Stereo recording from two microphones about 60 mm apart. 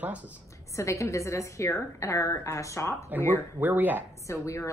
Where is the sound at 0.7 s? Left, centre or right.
Left.